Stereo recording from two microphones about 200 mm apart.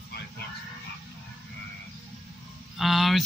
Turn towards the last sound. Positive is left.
turn(degrees=0)  # may be behind; listen again after turning